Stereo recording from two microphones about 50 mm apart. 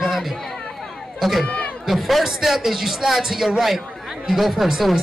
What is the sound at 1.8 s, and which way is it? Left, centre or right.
A man's voice, centre.